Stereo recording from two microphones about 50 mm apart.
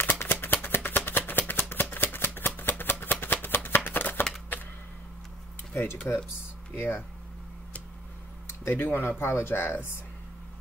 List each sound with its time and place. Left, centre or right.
0.0 s shuffling cards: left
2.8 s a sound: left
6.1 s speech: left
6.7 s speech: left
8.6 s speech: left